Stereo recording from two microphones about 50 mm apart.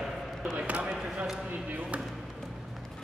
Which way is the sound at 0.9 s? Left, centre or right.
Centre.